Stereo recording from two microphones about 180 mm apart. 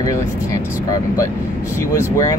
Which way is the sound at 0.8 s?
15° left (ahead or behind).